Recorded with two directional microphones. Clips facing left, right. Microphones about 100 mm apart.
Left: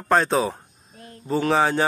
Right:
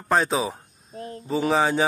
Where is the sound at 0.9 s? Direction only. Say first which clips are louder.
Right 9 dB; 35° right (ahead or behind).